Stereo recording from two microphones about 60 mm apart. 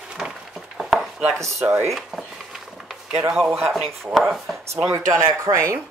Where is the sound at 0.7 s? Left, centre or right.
Centre.